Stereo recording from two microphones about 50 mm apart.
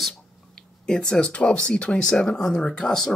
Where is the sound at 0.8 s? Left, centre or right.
Centre.